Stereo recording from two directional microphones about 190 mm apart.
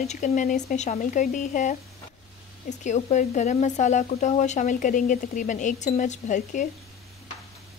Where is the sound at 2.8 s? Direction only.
40° left (ahead or behind).